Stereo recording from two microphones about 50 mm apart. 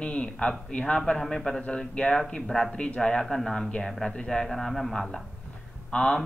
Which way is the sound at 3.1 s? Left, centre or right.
Centre.